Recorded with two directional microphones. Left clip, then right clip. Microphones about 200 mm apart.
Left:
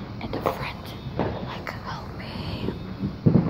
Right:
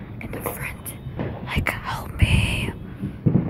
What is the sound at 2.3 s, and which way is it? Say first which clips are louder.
Whispering: right 13 dB; 50° right (ahead or behind).